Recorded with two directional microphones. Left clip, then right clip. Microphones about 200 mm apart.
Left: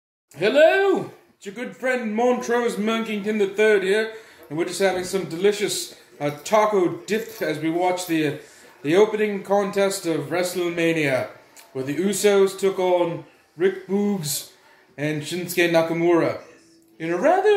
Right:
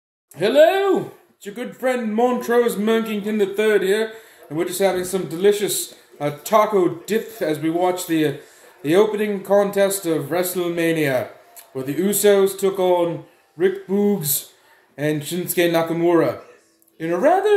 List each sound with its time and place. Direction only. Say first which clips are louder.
0.4 s a man's voice: right 2 dB; 35° right (ahead or behind)